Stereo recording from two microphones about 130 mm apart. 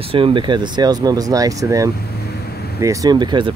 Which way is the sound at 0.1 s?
40° right (ahead or behind).